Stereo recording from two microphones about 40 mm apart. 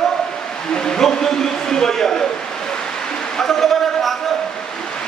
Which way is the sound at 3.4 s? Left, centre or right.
Centre.